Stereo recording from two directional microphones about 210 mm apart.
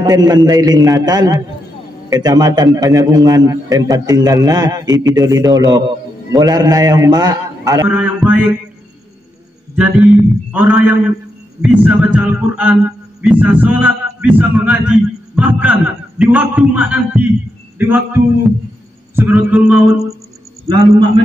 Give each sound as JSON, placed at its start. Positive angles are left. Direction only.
{"t": 0.0, "sound": "a man's voice", "side_deg": -20}
{"t": 9.8, "sound": "a man's voice", "side_deg": -5}
{"t": 20.6, "sound": "a man's voice", "side_deg": -20}